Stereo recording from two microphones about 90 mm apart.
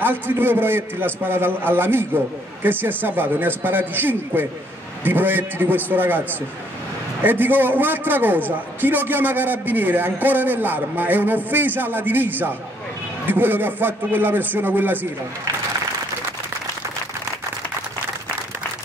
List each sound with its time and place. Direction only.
0.0 s a man's voice: 25° right (ahead or behind)